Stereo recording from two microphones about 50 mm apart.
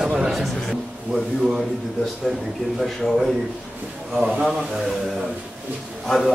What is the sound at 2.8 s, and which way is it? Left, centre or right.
Speech, centre.